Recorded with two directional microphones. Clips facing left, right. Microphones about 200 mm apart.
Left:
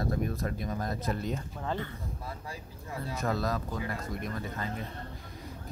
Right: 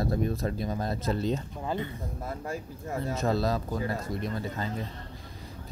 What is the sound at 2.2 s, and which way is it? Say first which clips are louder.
Speech: right 7 dB; 50° right (ahead or behind).